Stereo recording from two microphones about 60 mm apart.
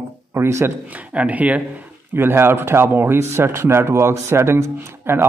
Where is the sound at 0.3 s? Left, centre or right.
Right.